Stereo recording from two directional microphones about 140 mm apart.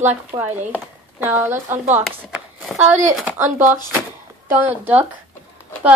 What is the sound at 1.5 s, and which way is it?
Speech, 60° right (ahead or behind).